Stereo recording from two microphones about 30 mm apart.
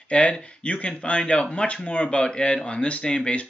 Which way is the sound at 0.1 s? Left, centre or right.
Left.